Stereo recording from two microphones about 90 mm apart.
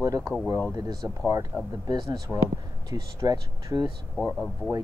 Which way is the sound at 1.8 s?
55° right (ahead or behind).